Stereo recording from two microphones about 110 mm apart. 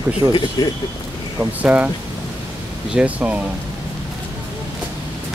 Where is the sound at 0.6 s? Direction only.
40° left (ahead or behind).